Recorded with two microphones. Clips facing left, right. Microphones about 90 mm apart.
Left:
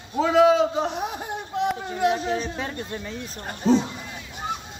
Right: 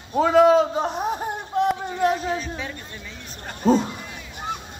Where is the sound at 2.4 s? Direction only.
40° left (ahead or behind).